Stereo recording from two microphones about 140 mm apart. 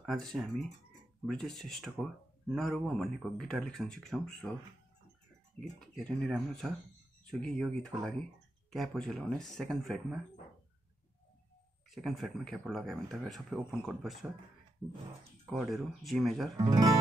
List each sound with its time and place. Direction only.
0.0 s speech: centre (ahead or behind)
5.8 s speech: centre (ahead or behind)
11.9 s speech: centre (ahead or behind)
15.5 s speech: centre (ahead or behind)
16.5 s speech: 25° right (ahead or behind)